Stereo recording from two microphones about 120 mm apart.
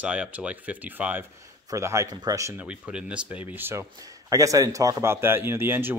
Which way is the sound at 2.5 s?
10° right (ahead or behind).